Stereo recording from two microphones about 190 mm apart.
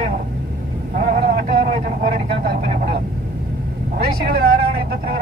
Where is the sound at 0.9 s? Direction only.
40° right (ahead or behind).